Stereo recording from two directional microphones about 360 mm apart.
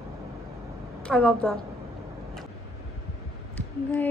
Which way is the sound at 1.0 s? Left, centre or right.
Centre.